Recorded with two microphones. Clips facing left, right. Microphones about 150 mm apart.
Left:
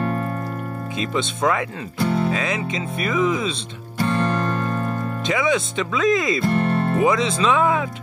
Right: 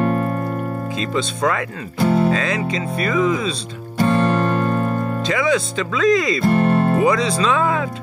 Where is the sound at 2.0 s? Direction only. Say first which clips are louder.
Right 5 dB; 50° right (ahead or behind).